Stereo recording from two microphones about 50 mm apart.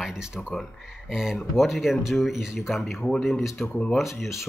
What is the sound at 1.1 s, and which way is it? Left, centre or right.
Speech, centre.